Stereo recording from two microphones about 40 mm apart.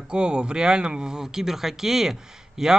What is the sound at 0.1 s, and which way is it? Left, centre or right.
Speech, right.